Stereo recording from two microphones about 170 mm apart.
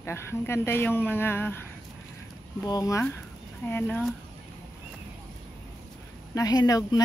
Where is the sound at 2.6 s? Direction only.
20° left (ahead or behind).